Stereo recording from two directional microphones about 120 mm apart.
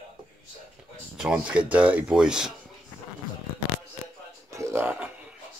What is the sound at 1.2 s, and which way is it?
Speech, 5° right (ahead or behind).